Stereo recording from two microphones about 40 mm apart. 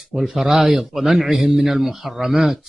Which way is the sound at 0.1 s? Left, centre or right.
Centre.